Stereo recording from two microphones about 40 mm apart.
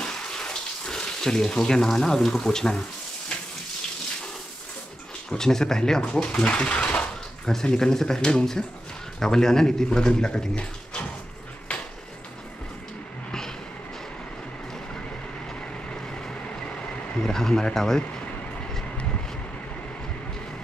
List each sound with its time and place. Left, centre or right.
0.0 s water: centre
2.4 s speech: centre
5.3 s speech: centre
6.3 s speech: left
7.4 s speech: centre
17.2 s speech: centre